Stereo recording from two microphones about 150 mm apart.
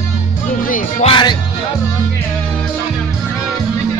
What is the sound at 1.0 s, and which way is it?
Speech, 35° left (ahead or behind).